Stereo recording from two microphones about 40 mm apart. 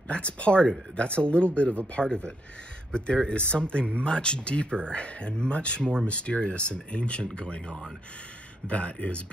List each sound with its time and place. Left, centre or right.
0.1 s speech: left
2.0 s speech: centre